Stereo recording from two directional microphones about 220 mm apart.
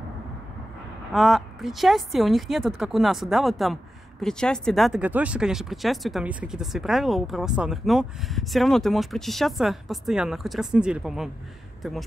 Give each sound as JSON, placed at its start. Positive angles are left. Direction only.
{"t": 1.1, "sound": "speech", "side_deg": 0}